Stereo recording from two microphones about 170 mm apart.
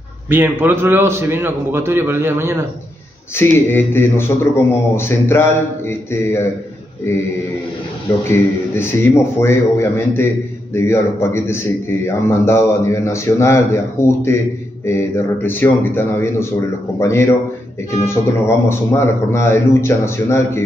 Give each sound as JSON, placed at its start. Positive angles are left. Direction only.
{"t": 0.3, "sound": "a man's voice", "side_deg": -10}
{"t": 3.3, "sound": "a man's voice", "side_deg": 15}
{"t": 8.3, "sound": "a man's voice", "side_deg": 15}